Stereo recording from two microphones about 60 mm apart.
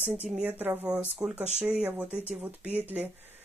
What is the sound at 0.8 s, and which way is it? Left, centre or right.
Speech, centre.